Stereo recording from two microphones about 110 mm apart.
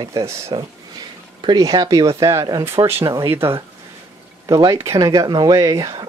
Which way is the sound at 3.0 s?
25° right (ahead or behind).